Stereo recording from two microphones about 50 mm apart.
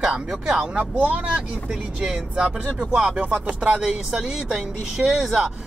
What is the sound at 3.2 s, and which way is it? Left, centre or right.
Music, right.